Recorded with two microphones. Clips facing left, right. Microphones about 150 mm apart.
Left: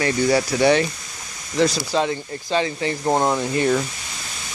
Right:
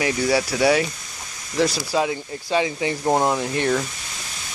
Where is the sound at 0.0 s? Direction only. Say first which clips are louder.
Left 2 dB; 5° right (ahead or behind).